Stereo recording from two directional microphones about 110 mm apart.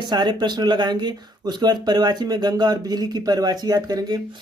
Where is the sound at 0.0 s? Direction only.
40° right (ahead or behind).